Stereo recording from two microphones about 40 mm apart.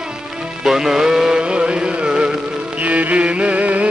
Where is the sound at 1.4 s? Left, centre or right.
Right.